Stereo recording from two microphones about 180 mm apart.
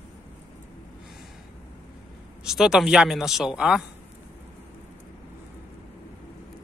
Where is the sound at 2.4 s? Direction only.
5° right (ahead or behind).